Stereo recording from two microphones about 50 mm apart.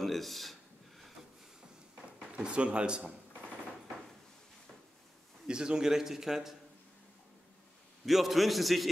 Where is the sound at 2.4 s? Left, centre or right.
Right.